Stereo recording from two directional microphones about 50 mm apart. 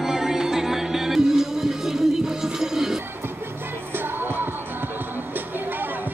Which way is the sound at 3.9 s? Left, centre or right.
Right.